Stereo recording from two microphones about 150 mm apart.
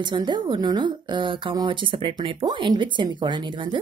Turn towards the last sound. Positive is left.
turn(degrees=-30)  # may be behind; listen again after turning